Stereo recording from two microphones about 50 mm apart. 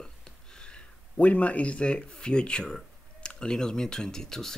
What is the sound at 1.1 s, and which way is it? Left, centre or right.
Speech, left.